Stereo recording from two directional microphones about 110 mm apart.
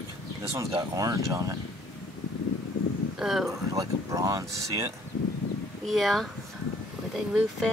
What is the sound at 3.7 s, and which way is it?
Speech, 30° right (ahead or behind).